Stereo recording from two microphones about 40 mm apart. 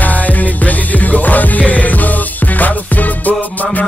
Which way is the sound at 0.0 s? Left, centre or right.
Left.